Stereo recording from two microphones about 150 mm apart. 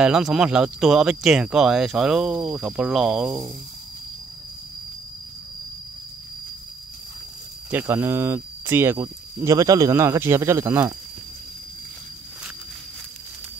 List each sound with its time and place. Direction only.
0.0 s speech: 5° right (ahead or behind)
7.8 s speech: 15° right (ahead or behind)